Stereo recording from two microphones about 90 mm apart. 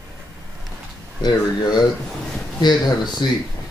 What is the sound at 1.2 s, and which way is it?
Speech, 50° left (ahead or behind).